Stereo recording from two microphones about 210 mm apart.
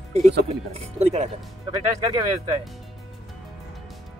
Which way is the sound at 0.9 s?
30° right (ahead or behind).